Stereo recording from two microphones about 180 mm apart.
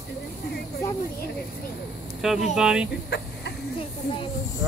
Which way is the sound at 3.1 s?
70° left (ahead or behind).